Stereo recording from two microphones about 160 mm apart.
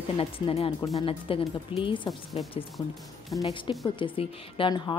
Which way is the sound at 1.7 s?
10° right (ahead or behind).